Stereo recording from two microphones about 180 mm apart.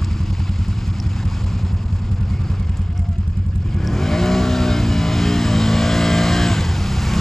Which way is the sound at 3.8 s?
Centre (ahead or behind).